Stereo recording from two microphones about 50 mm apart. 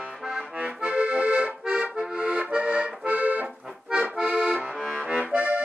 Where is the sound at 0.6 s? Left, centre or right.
Right.